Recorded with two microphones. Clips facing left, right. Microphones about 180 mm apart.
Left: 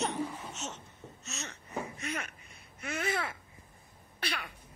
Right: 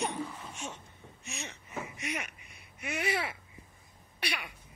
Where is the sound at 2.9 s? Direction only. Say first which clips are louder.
Right 1 dB; 15° right (ahead or behind).